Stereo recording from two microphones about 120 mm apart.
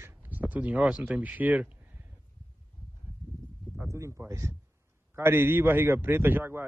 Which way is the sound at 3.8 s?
25° right (ahead or behind).